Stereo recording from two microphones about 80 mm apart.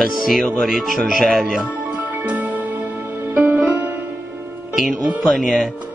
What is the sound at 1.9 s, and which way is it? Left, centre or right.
Music, centre.